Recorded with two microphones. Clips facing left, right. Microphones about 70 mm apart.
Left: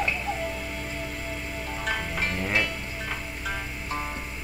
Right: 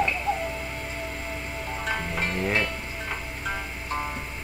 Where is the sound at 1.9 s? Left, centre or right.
Right.